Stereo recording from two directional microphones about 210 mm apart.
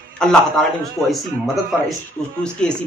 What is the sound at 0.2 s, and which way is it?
Speech, 5° left (ahead or behind).